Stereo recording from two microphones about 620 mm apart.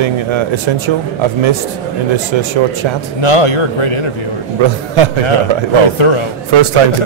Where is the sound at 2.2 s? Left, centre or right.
Right.